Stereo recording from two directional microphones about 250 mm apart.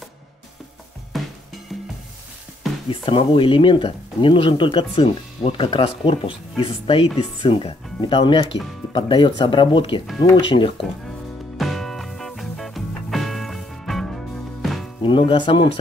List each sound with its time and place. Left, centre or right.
1.1 s music: centre
2.9 s speech: centre
11.1 s music: centre
15.0 s speech: centre